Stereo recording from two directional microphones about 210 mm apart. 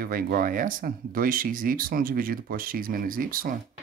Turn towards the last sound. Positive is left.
turn(degrees=-40)  # may be behind; listen again after turning